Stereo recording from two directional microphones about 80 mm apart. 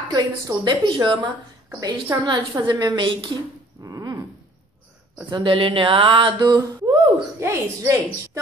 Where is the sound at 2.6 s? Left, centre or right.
Right.